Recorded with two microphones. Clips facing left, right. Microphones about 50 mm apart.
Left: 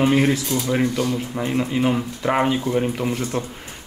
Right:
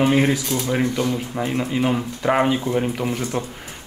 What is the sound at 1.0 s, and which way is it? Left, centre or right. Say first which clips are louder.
Speech: even; right.